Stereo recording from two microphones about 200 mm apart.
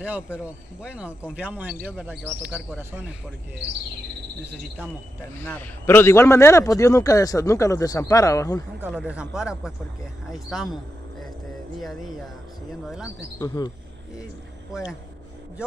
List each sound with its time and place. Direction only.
0.0 s speech: 5° right (ahead or behind)
5.4 s a man's voice: 10° left (ahead or behind)
8.8 s speech: 5° right (ahead or behind)
12.8 s speech: 5° right (ahead or behind)
14.7 s speech: 5° right (ahead or behind)